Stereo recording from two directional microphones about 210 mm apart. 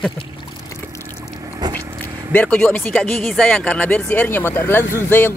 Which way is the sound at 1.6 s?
20° right (ahead or behind).